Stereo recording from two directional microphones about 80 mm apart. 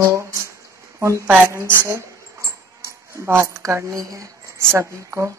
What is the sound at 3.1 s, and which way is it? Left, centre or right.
Speech, right.